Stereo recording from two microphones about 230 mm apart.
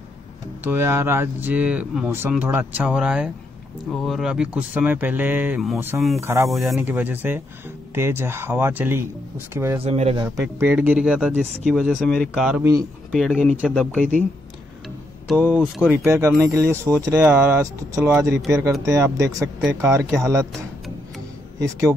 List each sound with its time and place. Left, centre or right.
0.7 s speech: centre
9.8 s speech: right
10.2 s speech: centre
15.2 s speech: centre
15.5 s speech: centre
21.5 s speech: centre